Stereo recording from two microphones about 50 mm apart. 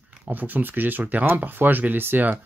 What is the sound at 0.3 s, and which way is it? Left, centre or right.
Speech, right.